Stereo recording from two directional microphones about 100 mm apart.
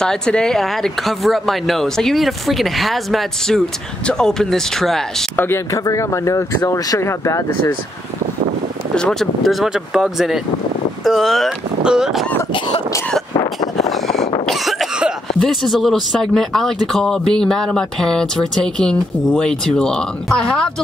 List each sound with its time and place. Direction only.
0.0 s speech: 5° left (ahead or behind)
5.3 s speech: 20° left (ahead or behind)
5.7 s speech: 35° left (ahead or behind)
8.9 s speech: 5° left (ahead or behind)
13.8 s vehicle: 5° left (ahead or behind)
14.4 s cough: centre (ahead or behind)
15.3 s speech: centre (ahead or behind)